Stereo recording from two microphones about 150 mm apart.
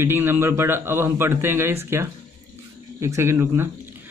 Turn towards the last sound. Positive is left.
turn(degrees=-15)  # may be behind; listen again after turning